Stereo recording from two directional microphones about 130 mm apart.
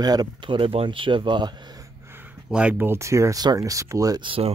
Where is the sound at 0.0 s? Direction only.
30° right (ahead or behind).